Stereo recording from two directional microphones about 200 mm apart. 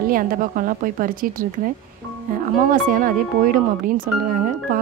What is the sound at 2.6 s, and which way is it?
Speech, 40° right (ahead or behind).